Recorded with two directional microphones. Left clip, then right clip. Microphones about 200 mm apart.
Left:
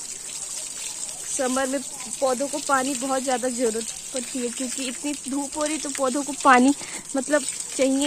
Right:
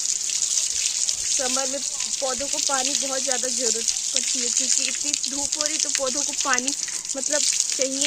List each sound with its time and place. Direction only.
1.4 s speech: 35° left (ahead or behind)
5.6 s speech: 45° left (ahead or behind)